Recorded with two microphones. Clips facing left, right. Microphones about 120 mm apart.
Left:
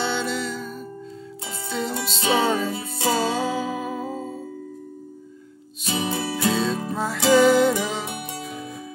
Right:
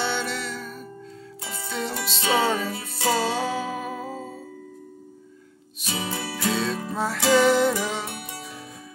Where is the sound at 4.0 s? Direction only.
25° left (ahead or behind).